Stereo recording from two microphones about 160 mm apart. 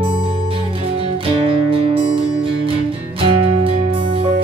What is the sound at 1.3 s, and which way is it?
Music, 35° right (ahead or behind).